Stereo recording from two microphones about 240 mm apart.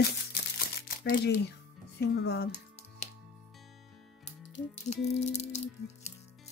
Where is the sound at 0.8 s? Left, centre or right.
Left.